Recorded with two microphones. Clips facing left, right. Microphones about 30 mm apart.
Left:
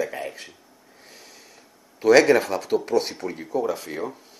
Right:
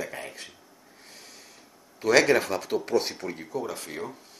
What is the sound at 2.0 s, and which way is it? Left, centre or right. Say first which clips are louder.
Speech: left 5 dB; centre.